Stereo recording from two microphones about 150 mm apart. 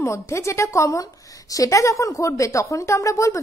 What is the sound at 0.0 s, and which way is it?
A woman's voice, 20° left (ahead or behind).